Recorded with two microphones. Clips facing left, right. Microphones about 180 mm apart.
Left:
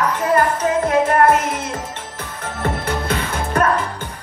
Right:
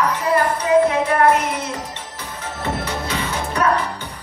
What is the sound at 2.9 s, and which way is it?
Music, 55° left (ahead or behind).